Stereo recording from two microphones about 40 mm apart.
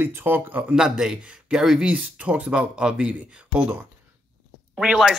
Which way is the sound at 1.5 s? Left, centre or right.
Centre.